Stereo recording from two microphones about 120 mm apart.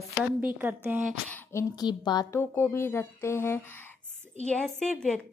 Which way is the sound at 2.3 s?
20° left (ahead or behind).